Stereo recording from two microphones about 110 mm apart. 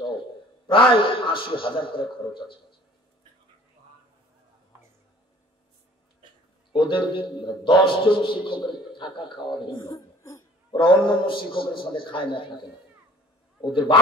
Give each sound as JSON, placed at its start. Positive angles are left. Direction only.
{"t": 0.7, "sound": "a man's voice", "side_deg": 50}
{"t": 6.7, "sound": "a man's voice", "side_deg": 50}
{"t": 9.9, "sound": "throat clearing", "side_deg": 30}
{"t": 10.7, "sound": "a man's voice", "side_deg": 50}
{"t": 13.6, "sound": "a man's voice", "side_deg": 45}